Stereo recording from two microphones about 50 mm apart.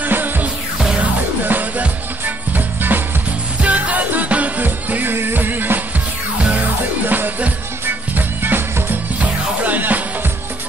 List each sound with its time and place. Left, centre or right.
0.0 s music: right
9.2 s music: right